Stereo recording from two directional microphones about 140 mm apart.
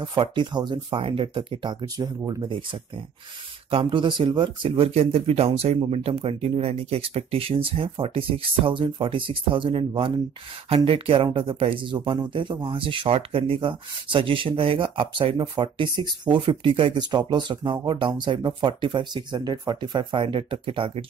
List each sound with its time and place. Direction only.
0.0 s speech: 35° right (ahead or behind)
3.7 s speech: 35° right (ahead or behind)